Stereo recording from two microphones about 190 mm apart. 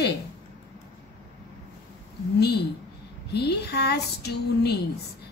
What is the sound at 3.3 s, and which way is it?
A woman's voice, 60° left (ahead or behind).